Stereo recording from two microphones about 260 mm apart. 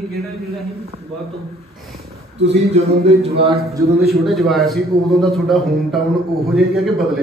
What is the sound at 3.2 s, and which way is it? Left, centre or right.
Speech, right.